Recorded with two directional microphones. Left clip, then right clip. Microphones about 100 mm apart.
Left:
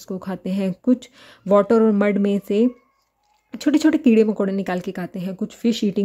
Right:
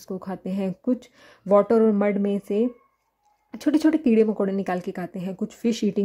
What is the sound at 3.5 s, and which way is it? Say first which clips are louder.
Speech: left 3 dB; 15° left (ahead or behind).